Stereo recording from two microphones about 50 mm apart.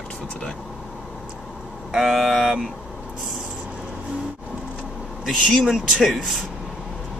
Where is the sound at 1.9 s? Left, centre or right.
Centre.